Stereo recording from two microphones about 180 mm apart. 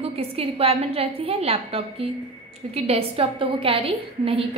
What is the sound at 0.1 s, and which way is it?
A woman's voice, 35° right (ahead or behind).